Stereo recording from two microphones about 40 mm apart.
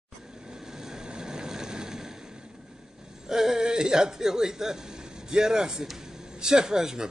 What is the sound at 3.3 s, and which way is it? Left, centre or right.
A man's voice, centre.